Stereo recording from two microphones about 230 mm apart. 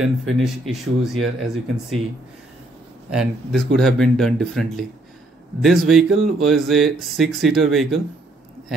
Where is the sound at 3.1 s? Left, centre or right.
Centre.